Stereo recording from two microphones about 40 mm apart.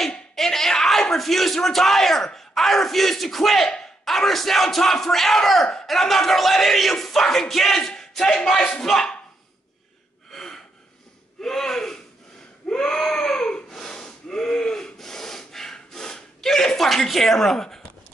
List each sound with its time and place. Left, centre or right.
0.1 s speech: centre
10.3 s gasp: centre
12.6 s baby cry: centre
13.7 s sawing: centre